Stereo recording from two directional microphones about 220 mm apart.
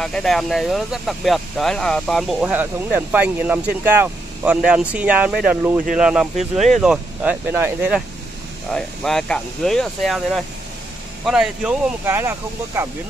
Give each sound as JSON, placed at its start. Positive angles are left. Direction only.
{"t": 0.0, "sound": "speech", "side_deg": 0}
{"t": 8.7, "sound": "speech", "side_deg": 0}